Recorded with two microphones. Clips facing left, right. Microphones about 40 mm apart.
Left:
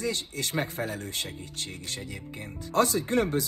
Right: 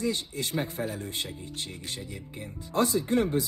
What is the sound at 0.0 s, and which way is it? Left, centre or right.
Speech, left.